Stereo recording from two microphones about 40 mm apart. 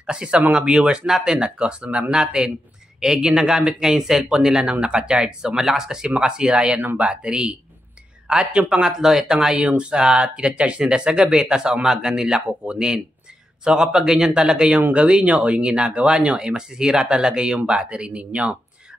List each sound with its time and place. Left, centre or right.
0.0 s speech: right
8.8 s speech: centre
9.6 s speech: right